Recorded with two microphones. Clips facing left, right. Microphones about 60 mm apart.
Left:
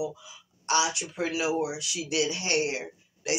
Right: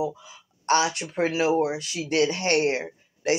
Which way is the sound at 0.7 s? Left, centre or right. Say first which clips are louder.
Right 4 dB; right.